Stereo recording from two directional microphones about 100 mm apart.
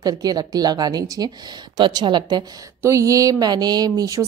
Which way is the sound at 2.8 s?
30° right (ahead or behind).